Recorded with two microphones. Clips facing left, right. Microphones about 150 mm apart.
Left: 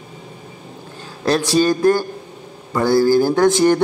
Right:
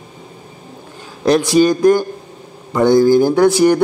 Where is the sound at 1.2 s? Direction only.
15° right (ahead or behind).